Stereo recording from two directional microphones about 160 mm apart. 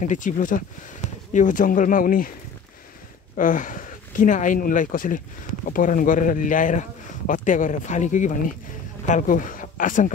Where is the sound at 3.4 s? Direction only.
55° left (ahead or behind).